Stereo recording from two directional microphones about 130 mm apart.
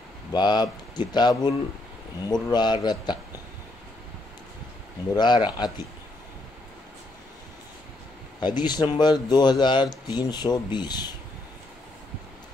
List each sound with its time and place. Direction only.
0.3 s speech: 35° left (ahead or behind)
5.1 s speech: 35° left (ahead or behind)
8.4 s speech: 35° left (ahead or behind)